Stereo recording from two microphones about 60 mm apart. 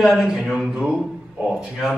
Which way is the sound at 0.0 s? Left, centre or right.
Centre.